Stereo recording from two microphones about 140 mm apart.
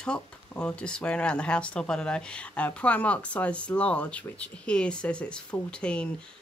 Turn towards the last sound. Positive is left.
turn(degrees=5)  # may be behind; listen again after turning